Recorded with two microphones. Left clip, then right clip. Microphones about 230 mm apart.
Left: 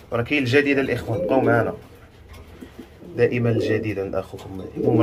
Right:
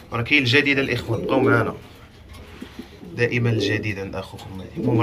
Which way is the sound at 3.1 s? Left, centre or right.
Left.